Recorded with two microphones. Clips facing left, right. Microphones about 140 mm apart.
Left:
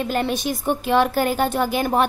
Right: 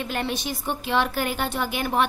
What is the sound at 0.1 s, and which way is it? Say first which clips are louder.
A woman's voice: left 6 dB; 45° left (ahead or behind).